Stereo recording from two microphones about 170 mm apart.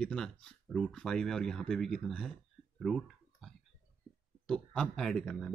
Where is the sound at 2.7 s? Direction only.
Centre (ahead or behind).